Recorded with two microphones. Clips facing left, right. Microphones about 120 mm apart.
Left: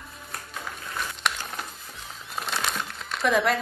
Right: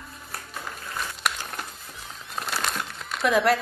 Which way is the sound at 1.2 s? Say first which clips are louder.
Even; 5° right (ahead or behind).